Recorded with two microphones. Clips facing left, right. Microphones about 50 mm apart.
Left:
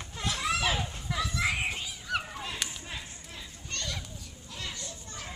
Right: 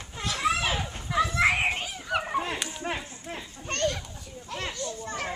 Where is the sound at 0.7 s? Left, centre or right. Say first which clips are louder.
Right 6 dB; right.